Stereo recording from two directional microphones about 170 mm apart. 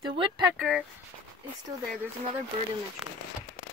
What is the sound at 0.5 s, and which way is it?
Rub, centre (ahead or behind).